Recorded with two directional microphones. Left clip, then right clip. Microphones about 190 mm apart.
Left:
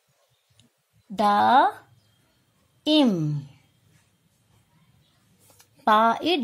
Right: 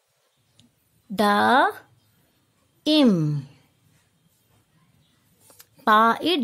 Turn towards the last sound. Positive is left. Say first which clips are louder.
# right 2 dB
turn(degrees=-10)  # may be behind; listen again after turning